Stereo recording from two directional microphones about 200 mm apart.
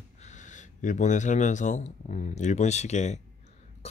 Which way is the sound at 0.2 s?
35° left (ahead or behind).